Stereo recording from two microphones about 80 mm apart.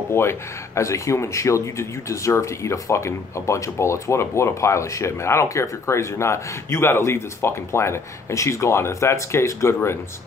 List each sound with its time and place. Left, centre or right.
0.1 s speech: left